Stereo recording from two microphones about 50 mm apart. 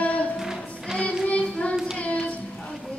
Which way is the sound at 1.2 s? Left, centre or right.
Left.